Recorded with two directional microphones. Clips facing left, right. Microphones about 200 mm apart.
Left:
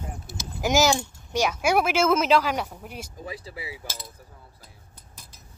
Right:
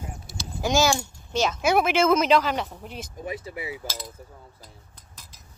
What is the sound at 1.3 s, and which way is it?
Speech, 10° left (ahead or behind).